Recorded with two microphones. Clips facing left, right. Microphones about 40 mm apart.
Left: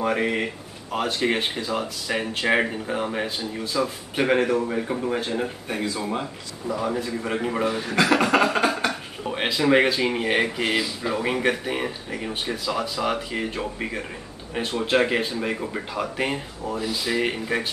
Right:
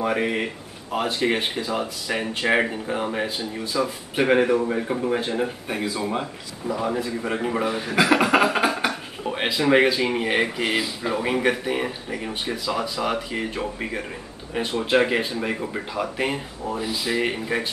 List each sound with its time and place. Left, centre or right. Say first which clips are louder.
0.0 s speech: even; centre